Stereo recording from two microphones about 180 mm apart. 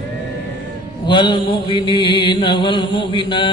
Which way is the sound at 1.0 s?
25° left (ahead or behind).